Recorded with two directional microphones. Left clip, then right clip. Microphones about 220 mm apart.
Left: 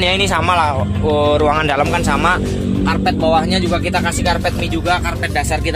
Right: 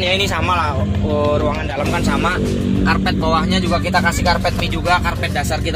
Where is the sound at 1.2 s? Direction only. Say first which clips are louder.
Left 5 dB; 40° left (ahead or behind).